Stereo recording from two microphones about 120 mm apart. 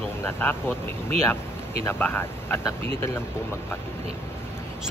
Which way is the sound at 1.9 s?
15° left (ahead or behind).